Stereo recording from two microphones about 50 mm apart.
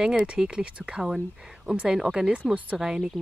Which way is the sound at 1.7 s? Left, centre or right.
Centre.